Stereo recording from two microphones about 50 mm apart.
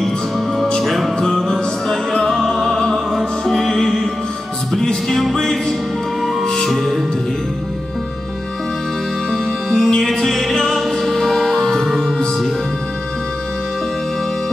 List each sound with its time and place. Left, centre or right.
0.8 s music: centre
9.3 s music: centre